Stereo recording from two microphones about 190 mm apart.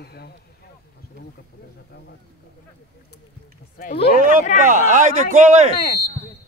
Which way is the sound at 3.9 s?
40° left (ahead or behind).